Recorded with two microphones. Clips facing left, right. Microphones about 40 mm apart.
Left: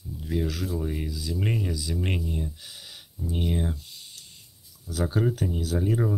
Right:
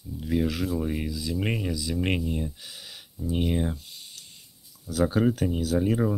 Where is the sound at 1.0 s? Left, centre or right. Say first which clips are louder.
Right 2 dB; right.